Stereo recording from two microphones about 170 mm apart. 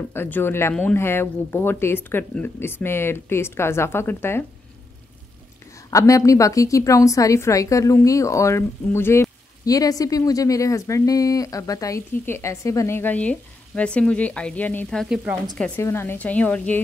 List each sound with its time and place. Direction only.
0.1 s speech: 15° left (ahead or behind)
5.9 s a woman's voice: 20° left (ahead or behind)